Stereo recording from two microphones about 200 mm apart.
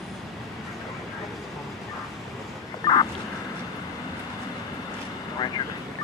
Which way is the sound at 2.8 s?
20° left (ahead or behind).